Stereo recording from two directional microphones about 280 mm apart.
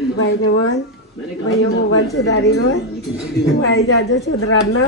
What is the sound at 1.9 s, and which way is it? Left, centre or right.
Speech, left.